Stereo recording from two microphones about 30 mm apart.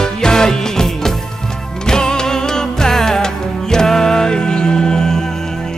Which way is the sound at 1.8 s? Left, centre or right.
Left.